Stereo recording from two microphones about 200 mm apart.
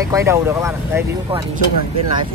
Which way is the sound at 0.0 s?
15° right (ahead or behind).